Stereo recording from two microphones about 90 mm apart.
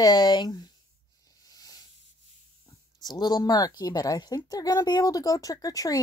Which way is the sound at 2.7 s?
50° left (ahead or behind).